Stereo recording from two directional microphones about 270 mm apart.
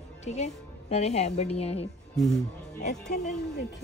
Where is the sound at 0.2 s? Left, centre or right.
Left.